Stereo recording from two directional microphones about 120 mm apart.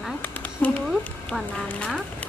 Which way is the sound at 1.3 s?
5° left (ahead or behind).